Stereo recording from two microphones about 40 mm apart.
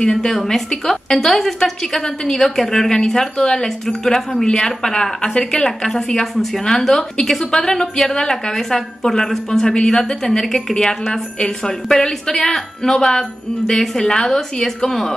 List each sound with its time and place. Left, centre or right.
0.0 s a woman's voice: left
0.3 s a woman's voice: centre